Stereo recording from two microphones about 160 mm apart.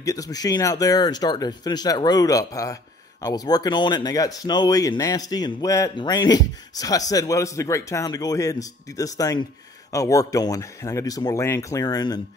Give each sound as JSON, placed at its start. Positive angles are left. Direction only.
{"t": 0.0, "sound": "speech", "side_deg": 20}